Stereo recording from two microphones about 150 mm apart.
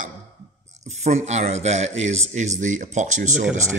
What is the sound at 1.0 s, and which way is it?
A man's voice, 50° right (ahead or behind).